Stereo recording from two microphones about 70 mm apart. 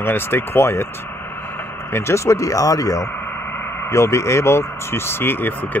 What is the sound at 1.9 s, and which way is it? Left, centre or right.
Speech, left.